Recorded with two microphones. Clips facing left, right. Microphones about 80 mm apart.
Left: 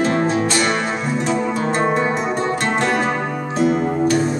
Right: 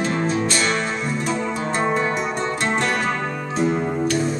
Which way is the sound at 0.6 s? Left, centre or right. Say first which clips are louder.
Left 3 dB; centre.